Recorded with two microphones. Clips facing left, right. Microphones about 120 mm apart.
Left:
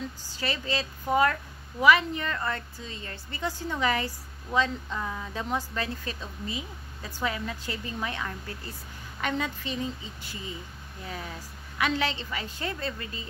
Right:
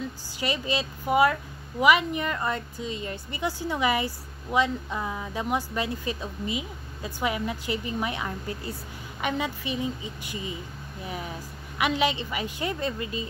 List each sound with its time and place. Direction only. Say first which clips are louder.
0.3 s a woman's voice: right 3 dB; 15° right (ahead or behind)